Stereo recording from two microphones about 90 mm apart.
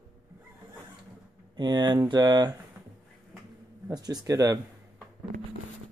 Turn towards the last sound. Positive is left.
turn(degrees=-40)  # may be behind; listen again after turning